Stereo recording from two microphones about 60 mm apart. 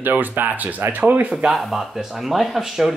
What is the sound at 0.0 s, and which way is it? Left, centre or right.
Speech, right.